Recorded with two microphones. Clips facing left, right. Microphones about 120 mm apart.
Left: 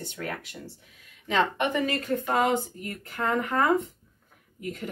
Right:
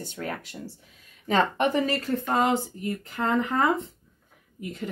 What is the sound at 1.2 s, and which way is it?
Speech, 40° right (ahead or behind).